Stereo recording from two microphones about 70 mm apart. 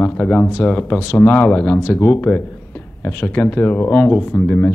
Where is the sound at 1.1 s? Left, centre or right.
Left.